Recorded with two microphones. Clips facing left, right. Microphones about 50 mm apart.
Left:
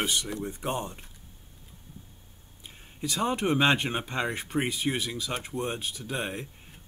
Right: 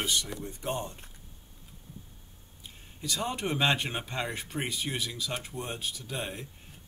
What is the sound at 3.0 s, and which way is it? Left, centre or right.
Speech, centre.